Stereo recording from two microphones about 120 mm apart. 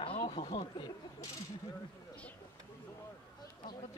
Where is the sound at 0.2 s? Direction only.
60° left (ahead or behind).